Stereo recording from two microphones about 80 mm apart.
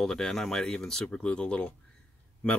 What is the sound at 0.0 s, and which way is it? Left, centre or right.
Speech, centre.